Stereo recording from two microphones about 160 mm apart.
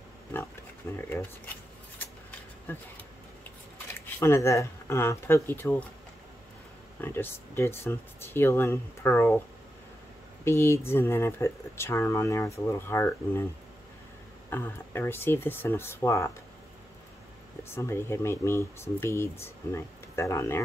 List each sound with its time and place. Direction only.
1.0 s speech: 15° left (ahead or behind)
2.7 s speech: 10° left (ahead or behind)
4.0 s speech: 15° left (ahead or behind)
7.0 s speech: 15° left (ahead or behind)
10.4 s speech: 15° left (ahead or behind)
14.5 s speech: 15° left (ahead or behind)
17.6 s speech: 15° left (ahead or behind)